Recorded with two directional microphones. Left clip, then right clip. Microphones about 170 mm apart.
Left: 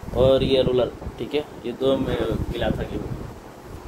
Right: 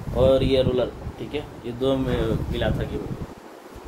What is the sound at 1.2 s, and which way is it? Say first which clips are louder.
Speech: left 4 dB; 60° left (ahead or behind).